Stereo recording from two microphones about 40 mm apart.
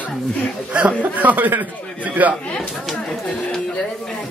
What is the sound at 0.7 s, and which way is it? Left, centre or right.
Speech, right.